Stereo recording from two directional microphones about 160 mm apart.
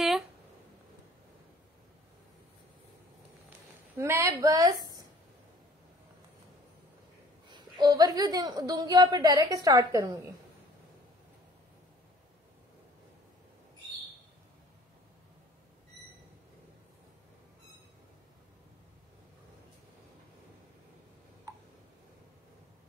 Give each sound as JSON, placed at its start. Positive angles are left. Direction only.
{"t": 4.0, "sound": "a woman's voice", "side_deg": -15}
{"t": 7.4, "sound": "a woman's voice", "side_deg": -30}